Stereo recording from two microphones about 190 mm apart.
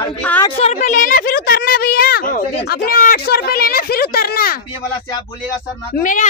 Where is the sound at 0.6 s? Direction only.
35° left (ahead or behind); by 4.6 s 55° left (ahead or behind).